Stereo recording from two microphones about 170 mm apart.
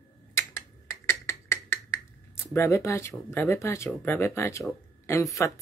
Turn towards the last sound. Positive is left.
turn(degrees=20)  # may be behind; listen again after turning